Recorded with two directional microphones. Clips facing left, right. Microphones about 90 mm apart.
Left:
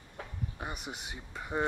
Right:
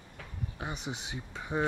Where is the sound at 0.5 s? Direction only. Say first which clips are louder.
Right 4 dB; centre (ahead or behind).